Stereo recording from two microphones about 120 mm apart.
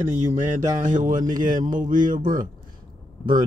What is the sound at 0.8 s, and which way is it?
Speech, 90° right.